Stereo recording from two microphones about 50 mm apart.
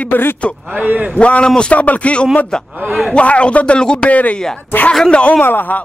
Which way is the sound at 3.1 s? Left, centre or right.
Left.